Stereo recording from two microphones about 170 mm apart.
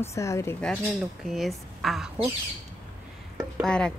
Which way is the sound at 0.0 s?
15° left (ahead or behind).